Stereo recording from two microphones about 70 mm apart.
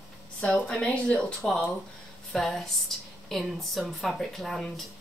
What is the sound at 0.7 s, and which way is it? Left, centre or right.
Speech, centre.